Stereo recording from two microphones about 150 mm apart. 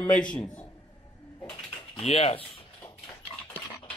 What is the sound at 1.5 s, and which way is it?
Pigeon, 40° left (ahead or behind).